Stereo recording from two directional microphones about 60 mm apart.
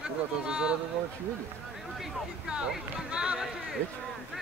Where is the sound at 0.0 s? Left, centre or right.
Centre.